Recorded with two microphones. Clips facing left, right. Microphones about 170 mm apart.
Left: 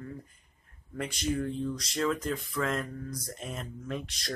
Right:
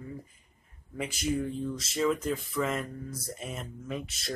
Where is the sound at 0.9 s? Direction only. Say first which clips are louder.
Right 1 dB; 5° right (ahead or behind).